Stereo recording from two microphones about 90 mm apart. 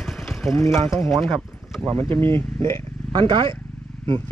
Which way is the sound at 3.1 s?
60° right (ahead or behind).